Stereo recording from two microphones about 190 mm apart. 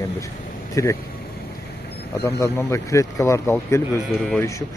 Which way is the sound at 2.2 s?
15° left (ahead or behind).